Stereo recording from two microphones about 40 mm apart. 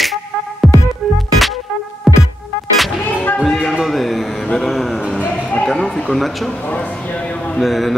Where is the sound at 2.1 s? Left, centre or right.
Centre.